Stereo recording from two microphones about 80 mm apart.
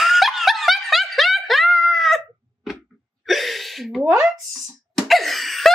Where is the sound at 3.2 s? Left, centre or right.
Centre.